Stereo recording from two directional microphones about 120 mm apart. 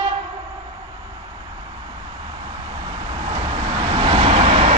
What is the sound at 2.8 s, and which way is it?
Vehicle, 45° right (ahead or behind).